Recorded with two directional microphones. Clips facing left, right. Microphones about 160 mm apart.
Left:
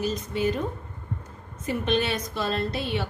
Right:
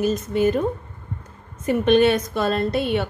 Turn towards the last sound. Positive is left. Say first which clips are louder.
# right 7 dB
turn(degrees=-55)  # may be behind; listen again after turning